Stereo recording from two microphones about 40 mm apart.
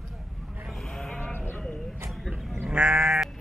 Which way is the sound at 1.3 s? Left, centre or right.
Left.